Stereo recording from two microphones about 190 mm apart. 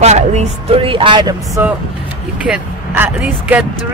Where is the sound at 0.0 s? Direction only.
35° right (ahead or behind); by 1.7 s 20° right (ahead or behind).